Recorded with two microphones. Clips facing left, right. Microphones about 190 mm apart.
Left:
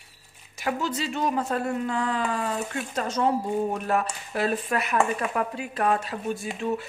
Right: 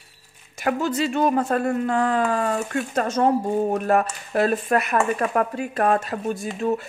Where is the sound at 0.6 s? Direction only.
55° right (ahead or behind).